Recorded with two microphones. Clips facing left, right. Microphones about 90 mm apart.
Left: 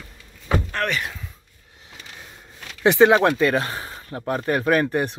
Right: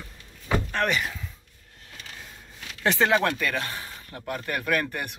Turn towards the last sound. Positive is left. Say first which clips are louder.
# left 7 dB
turn(degrees=30)  # may be behind; listen again after turning